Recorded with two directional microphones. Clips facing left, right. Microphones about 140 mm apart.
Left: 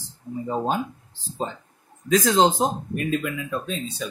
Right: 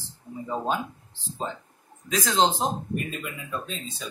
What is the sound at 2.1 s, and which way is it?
Speech, 45° left (ahead or behind).